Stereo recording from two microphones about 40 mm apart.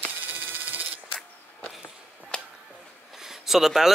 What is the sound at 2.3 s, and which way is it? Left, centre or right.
Music, left.